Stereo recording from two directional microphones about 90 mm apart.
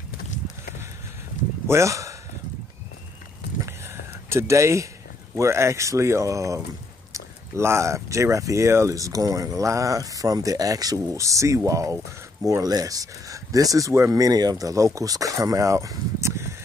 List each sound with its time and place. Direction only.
1.7 s speech: 35° right (ahead or behind)
3.6 s a sound: 30° right (ahead or behind)
5.3 s speech: 30° right (ahead or behind)